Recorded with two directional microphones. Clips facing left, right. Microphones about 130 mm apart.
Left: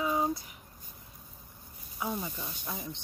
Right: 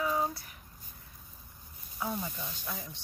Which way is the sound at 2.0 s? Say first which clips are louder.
Left 1 dB; 10° left (ahead or behind).